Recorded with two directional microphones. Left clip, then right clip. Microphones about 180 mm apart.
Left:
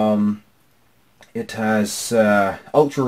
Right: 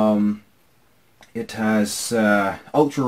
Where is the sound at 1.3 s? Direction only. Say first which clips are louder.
Left 2 dB; 45° left (ahead or behind).